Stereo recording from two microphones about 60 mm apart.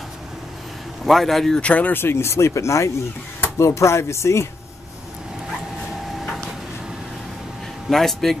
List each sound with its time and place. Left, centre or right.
1.0 s a man's voice: centre
1.6 s speech: left
2.0 s speech: left
7.9 s a man's voice: centre